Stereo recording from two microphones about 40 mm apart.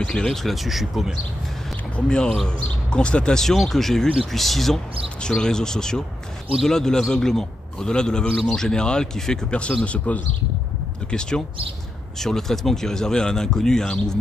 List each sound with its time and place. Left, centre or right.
0.0 s speech: centre
0.4 s speech: centre
2.0 s speech: left
3.6 s speech: centre
5.3 s speech: centre
9.5 s speech: left
11.1 s speech: left
12.2 s speech: centre